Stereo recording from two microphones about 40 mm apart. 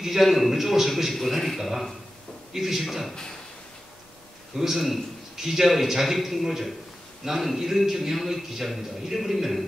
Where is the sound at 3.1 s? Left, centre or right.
Centre.